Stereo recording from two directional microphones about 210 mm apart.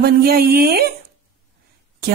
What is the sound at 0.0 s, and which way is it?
Speech, 45° right (ahead or behind).